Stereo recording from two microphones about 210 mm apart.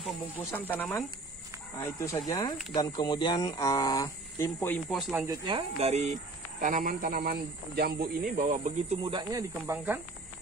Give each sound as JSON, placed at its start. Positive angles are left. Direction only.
{"t": 0.5, "sound": "speech", "side_deg": 10}
{"t": 5.2, "sound": "speech", "side_deg": -20}
{"t": 9.0, "sound": "speech", "side_deg": -20}